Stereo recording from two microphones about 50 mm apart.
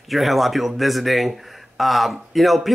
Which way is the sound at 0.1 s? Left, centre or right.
Centre.